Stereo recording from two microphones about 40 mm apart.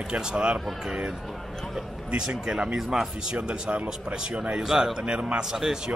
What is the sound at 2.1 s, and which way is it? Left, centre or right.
Speech, centre.